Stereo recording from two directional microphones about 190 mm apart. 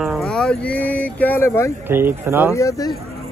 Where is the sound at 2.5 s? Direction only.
15° left (ahead or behind).